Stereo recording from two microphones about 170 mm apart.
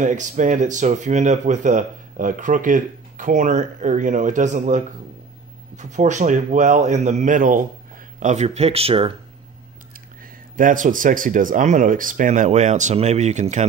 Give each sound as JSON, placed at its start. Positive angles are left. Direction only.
{"t": 0.0, "sound": "speech", "side_deg": -50}
{"t": 10.5, "sound": "speech", "side_deg": -50}